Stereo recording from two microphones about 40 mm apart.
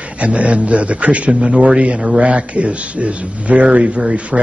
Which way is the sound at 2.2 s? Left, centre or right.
Right.